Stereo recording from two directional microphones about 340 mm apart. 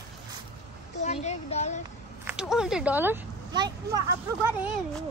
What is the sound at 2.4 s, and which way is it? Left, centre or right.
Speech, centre.